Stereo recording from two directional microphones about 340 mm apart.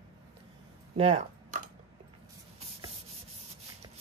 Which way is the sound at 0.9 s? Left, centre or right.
Centre.